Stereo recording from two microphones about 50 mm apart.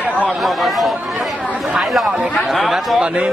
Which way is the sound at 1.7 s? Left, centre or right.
Centre.